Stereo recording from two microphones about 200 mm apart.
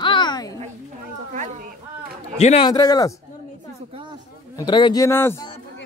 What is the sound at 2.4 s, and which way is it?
Speech, 35° left (ahead or behind).